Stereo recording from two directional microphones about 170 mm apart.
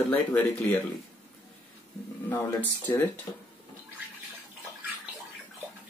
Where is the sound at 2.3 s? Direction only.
10° left (ahead or behind).